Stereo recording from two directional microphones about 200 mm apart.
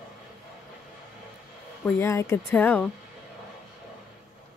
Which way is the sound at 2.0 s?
15° left (ahead or behind).